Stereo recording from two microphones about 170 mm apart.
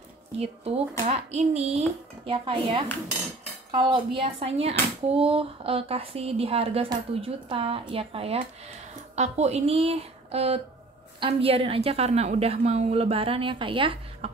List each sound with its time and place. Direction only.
0.4 s speech: 35° right (ahead or behind)